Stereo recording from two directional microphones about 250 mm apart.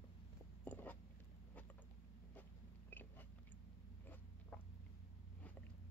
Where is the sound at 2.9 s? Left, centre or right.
Centre.